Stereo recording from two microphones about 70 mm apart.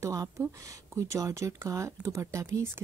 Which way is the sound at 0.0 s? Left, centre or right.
Right.